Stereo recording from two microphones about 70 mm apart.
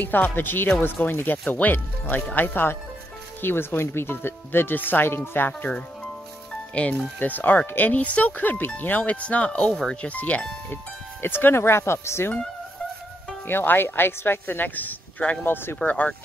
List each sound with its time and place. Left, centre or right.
0.0 s speech: left
6.7 s speech: centre
11.2 s speech: left
13.5 s speech: left
15.8 s speech: centre